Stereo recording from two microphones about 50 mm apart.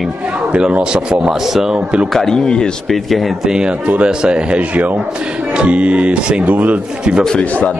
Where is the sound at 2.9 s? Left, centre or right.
Centre.